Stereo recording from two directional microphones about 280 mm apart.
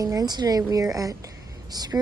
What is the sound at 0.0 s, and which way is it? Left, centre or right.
A woman's voice, centre.